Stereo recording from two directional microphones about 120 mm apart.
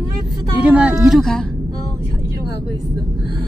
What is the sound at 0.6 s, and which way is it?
Speech, 10° right (ahead or behind).